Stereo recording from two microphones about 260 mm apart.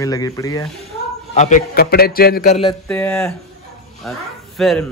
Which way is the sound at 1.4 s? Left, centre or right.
Left.